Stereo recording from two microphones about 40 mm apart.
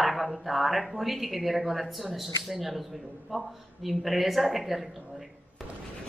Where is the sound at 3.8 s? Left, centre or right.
Centre.